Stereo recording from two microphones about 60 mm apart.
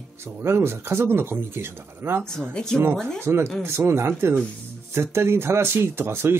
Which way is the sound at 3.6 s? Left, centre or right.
Right.